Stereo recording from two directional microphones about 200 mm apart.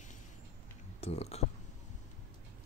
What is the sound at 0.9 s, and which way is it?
Speech, 30° left (ahead or behind).